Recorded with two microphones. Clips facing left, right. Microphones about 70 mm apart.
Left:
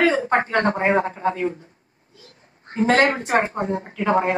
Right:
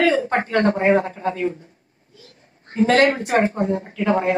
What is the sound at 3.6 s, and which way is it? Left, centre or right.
Speech, left.